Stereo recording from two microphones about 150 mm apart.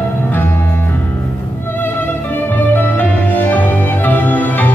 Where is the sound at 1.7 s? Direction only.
15° left (ahead or behind).